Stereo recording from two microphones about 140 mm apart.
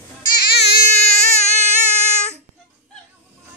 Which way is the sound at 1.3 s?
50° left (ahead or behind).